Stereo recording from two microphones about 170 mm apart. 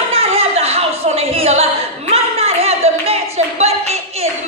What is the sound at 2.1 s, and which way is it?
Clapping, 40° right (ahead or behind).